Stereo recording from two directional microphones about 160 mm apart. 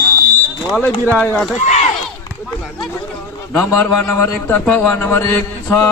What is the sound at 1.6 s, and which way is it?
Speech, 45° left (ahead or behind).